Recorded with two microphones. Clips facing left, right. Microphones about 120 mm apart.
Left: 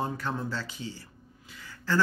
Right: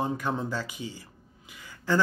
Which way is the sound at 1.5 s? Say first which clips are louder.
Right 3 dB; 15° right (ahead or behind).